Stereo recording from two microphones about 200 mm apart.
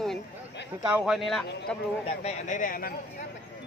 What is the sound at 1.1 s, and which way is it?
Speech, centre (ahead or behind).